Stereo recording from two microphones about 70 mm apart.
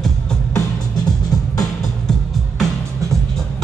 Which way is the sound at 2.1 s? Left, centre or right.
Centre.